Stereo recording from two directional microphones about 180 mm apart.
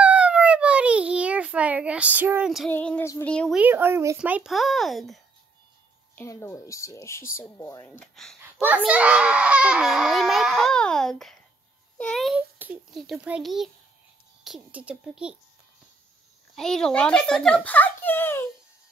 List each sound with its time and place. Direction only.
0.0 s a sound: 5° right (ahead or behind)
2.7 s a woman's voice: 10° left (ahead or behind)
3.5 s a child's voice: 10° right (ahead or behind)
6.1 s a woman's voice: 15° left (ahead or behind)
8.0 s a child's voice: 5° left (ahead or behind)
8.6 s a child's voice: 10° right (ahead or behind)
16.5 s a child's voice: centre (ahead or behind)